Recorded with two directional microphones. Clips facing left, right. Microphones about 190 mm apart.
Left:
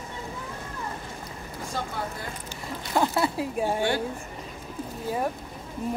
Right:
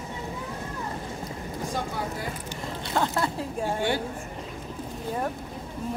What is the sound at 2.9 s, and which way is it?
Speech, 10° left (ahead or behind).